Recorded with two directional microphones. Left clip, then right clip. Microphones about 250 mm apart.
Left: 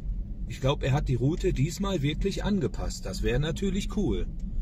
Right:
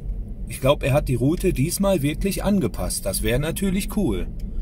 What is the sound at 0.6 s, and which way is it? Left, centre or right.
Speech, centre.